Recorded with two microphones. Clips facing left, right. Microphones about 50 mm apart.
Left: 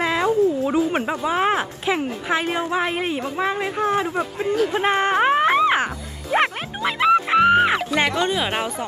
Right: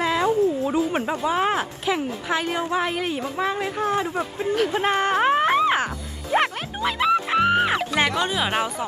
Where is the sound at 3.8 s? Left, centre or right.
Left.